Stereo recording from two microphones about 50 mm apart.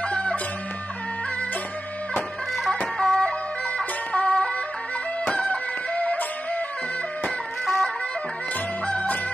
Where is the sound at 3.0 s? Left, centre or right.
Centre.